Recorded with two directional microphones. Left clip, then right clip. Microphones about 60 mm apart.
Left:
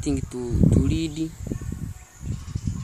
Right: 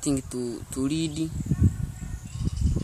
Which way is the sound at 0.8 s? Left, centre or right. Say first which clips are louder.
Left 1 dB; right.